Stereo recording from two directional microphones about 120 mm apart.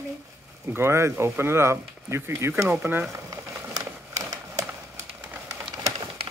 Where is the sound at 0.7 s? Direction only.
20° right (ahead or behind).